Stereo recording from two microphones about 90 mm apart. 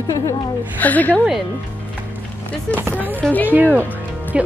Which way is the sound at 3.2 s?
15° left (ahead or behind).